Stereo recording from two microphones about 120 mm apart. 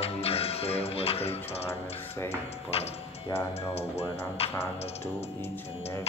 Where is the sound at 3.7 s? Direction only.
60° left (ahead or behind).